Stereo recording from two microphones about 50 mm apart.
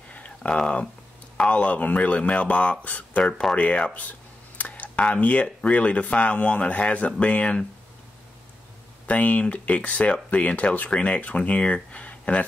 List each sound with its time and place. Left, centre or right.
0.4 s speech: centre
9.0 s speech: left